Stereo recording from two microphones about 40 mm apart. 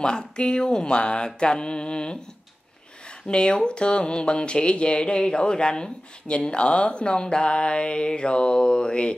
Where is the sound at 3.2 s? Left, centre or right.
Left.